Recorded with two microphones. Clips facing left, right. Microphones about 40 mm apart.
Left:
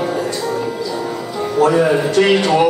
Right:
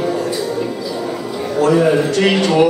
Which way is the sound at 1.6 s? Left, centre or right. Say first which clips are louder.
Even; centre.